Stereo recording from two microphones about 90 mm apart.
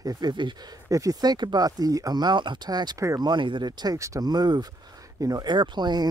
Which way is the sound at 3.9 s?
35° right (ahead or behind).